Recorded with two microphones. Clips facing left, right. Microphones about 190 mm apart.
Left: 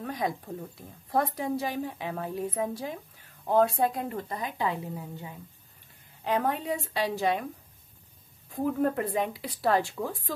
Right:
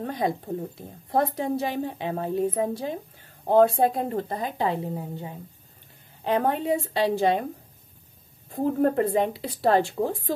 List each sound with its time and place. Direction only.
0.0 s a woman's voice: 30° right (ahead or behind)
8.6 s speech: 35° right (ahead or behind)